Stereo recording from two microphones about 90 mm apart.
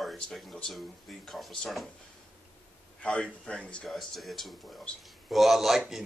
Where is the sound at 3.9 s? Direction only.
Centre (ahead or behind).